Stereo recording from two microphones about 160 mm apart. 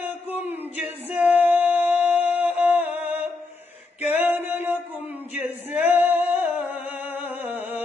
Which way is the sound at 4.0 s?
40° left (ahead or behind).